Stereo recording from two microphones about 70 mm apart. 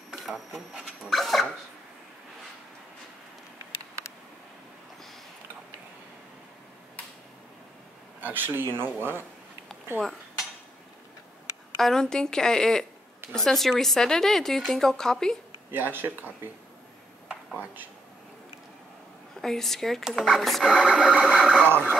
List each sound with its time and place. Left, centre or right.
0.2 s a woman's voice: centre
8.2 s speech: right
11.8 s a woman's voice: centre
15.7 s speech: right
19.4 s a woman's voice: centre
20.6 s a sound: centre